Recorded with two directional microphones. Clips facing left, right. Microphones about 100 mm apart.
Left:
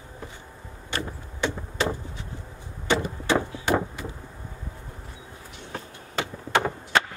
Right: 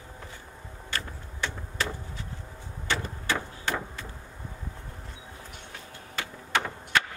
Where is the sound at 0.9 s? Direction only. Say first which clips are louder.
Left 4 dB; 20° left (ahead or behind).